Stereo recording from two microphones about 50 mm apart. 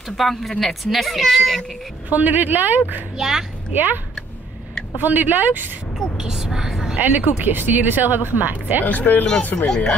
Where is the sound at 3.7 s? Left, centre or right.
Right.